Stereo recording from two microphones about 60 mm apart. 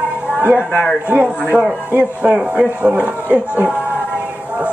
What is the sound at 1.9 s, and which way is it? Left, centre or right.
Speech, right.